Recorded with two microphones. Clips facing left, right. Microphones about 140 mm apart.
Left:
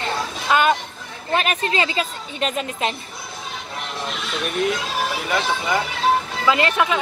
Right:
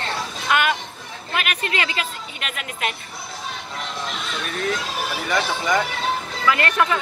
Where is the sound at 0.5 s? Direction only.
25° left (ahead or behind).